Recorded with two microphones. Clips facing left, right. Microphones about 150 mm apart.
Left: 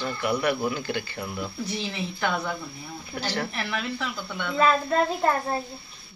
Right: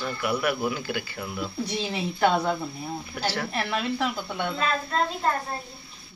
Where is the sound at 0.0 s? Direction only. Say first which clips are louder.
Left 1 dB; 5° right (ahead or behind).